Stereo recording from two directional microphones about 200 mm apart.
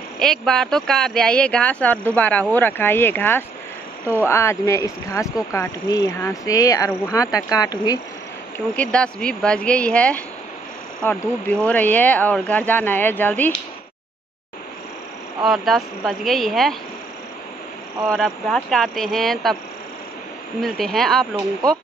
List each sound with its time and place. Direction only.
0.2 s speech: centre (ahead or behind); by 8.0 s 20° left (ahead or behind)
8.5 s speech: 5° left (ahead or behind)
15.4 s speech: centre (ahead or behind)
18.0 s speech: centre (ahead or behind)
20.6 s speech: centre (ahead or behind)